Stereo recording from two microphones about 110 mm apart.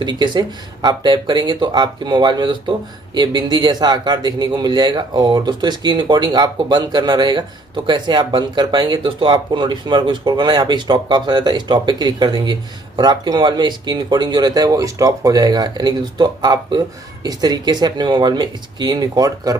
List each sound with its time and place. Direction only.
0.0 s speech: 45° right (ahead or behind)